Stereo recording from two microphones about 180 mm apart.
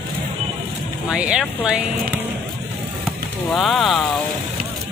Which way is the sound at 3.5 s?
Centre (ahead or behind).